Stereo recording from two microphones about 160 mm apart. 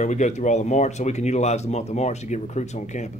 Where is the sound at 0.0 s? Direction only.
45° left (ahead or behind).